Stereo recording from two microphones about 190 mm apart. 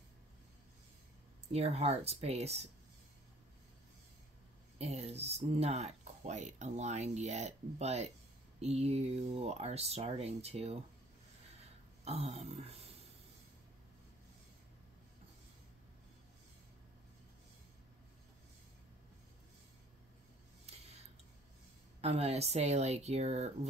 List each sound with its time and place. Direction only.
1.5 s speech: 35° right (ahead or behind)
4.7 s speech: 35° right (ahead or behind)
12.0 s speech: 35° right (ahead or behind)
20.7 s a sound: 35° right (ahead or behind)
22.0 s speech: 30° right (ahead or behind)